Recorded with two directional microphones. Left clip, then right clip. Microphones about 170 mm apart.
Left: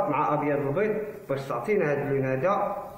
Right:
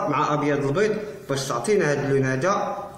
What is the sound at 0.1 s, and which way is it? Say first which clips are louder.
A man's voice: right 3 dB; 20° right (ahead or behind).